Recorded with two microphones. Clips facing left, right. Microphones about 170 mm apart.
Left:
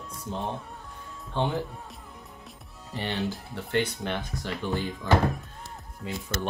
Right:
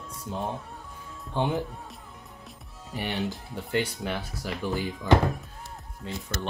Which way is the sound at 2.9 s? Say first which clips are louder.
Even; 15° right (ahead or behind).